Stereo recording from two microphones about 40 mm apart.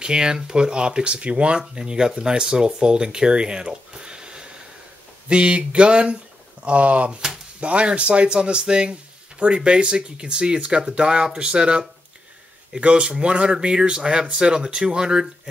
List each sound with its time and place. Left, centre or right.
0.0 s speech: centre
12.8 s speech: right